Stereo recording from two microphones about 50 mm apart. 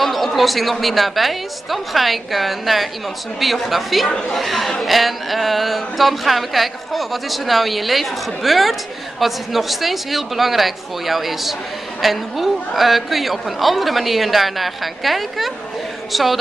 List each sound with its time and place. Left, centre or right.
0.0 s speech: centre